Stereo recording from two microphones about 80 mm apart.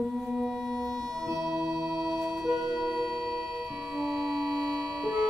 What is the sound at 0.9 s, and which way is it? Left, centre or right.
Music, right.